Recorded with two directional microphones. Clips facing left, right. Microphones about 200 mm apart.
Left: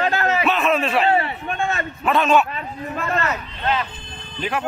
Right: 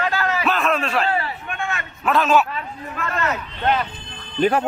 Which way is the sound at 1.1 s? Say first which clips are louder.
Left 4 dB; 25° left (ahead or behind).